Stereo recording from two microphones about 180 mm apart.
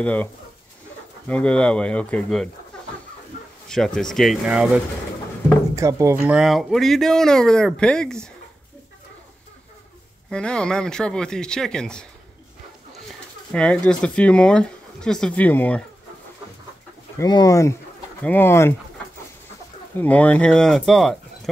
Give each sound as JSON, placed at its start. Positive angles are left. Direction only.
{"t": 0.0, "sound": "speech", "side_deg": 10}
{"t": 3.6, "sound": "speech", "side_deg": 5}
{"t": 5.8, "sound": "speech", "side_deg": -15}
{"t": 6.2, "sound": "speech", "side_deg": -5}
{"t": 10.3, "sound": "speech", "side_deg": 5}
{"t": 13.5, "sound": "speech", "side_deg": 5}
{"t": 17.2, "sound": "speech", "side_deg": 20}
{"t": 20.0, "sound": "speech", "side_deg": 10}